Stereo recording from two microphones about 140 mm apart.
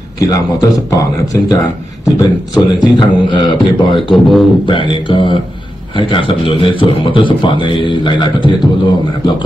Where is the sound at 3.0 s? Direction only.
35° left (ahead or behind).